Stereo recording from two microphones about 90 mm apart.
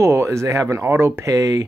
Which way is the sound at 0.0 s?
30° right (ahead or behind).